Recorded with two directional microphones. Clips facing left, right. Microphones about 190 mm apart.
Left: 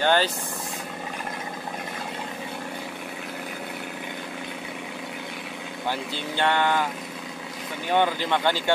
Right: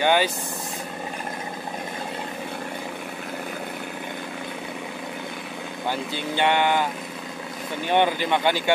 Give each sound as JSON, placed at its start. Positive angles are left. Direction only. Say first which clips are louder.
{"t": 0.0, "sound": "speech", "louder": "right 1 dB", "side_deg": -15}
{"t": 6.1, "sound": "a sound", "louder": "right 3 dB", "side_deg": -15}
{"t": 7.9, "sound": "speech", "louder": "right 2 dB", "side_deg": -20}